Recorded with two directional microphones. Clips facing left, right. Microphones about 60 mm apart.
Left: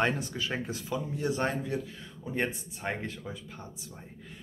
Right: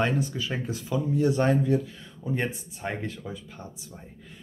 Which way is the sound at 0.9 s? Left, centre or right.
Centre.